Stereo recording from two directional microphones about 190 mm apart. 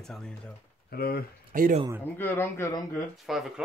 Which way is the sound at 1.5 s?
40° right (ahead or behind).